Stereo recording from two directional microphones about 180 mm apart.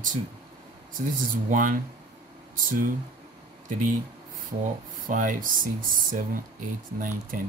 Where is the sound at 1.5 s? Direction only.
50° right (ahead or behind).